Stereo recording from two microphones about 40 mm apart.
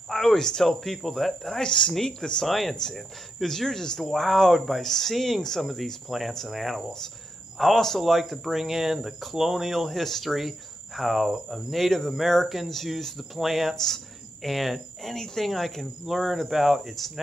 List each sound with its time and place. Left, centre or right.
0.1 s a sound: centre
0.4 s speech: centre
1.5 s speech: centre
2.4 s speech: centre
4.0 s speech: centre
16.1 s speech: centre